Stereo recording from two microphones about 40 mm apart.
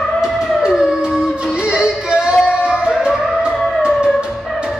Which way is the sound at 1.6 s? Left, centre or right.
Right.